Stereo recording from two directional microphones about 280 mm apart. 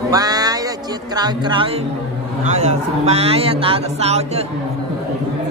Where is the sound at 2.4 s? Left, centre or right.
Right.